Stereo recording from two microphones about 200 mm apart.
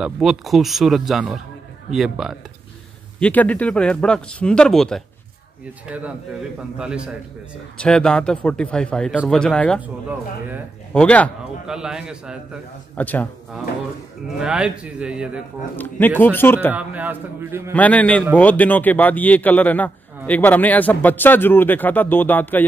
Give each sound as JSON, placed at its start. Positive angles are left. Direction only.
{"t": 0.0, "sound": "a man's voice", "side_deg": 0}
{"t": 9.8, "sound": "a man's voice", "side_deg": -5}
{"t": 10.9, "sound": "speech", "side_deg": 5}
{"t": 12.9, "sound": "speech", "side_deg": 10}
{"t": 14.4, "sound": "speech", "side_deg": -5}
{"t": 15.7, "sound": "speech", "side_deg": 10}
{"t": 16.7, "sound": "a man's voice", "side_deg": -10}
{"t": 17.7, "sound": "speech", "side_deg": 5}